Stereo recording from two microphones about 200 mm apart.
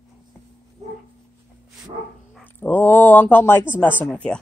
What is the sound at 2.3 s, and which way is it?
Speech, 10° left (ahead or behind).